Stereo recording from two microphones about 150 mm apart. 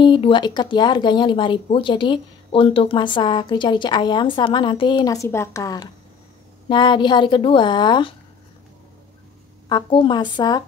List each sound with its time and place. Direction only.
0.0 s speech: 35° left (ahead or behind)
9.7 s speech: 30° left (ahead or behind)